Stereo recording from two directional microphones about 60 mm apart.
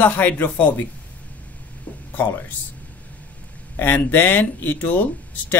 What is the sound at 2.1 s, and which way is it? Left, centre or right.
Speech, left.